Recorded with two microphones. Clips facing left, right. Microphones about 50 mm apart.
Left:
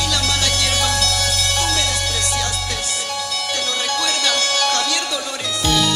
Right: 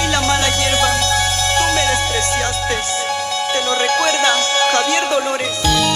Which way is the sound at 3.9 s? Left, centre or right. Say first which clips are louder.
Right 5 dB; right.